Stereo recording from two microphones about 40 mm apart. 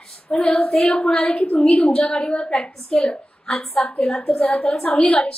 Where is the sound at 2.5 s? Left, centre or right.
Centre.